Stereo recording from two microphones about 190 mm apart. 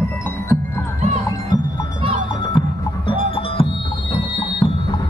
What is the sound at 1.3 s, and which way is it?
Music, 20° left (ahead or behind).